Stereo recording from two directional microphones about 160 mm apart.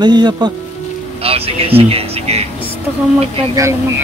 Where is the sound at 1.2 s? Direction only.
35° right (ahead or behind).